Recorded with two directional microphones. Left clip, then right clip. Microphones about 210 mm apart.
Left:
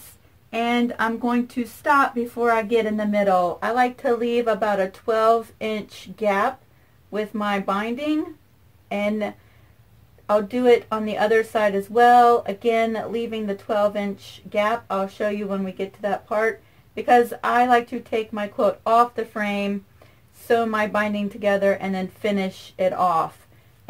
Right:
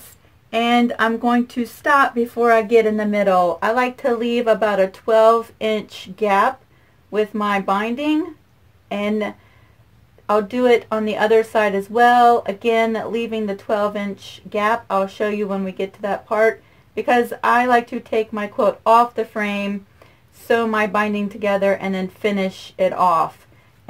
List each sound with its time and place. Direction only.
0.5 s speech: 30° right (ahead or behind)